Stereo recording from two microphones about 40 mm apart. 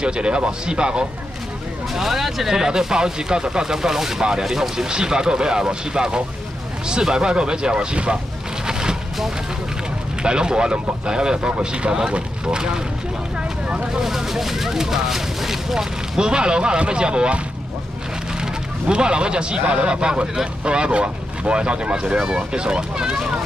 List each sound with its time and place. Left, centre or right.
0.0 s speech: right
2.0 s speech: centre; by 8.2 s right
8.6 s a sound: centre
10.2 s speech: right
13.9 s speech: centre
16.3 s speech: right
18.4 s speech: right